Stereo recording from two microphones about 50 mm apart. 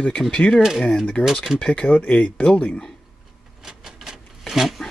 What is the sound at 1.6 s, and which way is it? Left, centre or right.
Speech, left.